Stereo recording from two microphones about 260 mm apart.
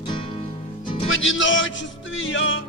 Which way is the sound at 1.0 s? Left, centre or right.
Left.